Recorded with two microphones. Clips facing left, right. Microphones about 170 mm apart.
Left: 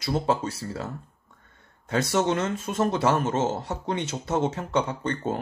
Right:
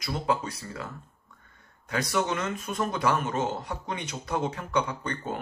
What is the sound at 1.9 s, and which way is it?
Speech, 25° left (ahead or behind).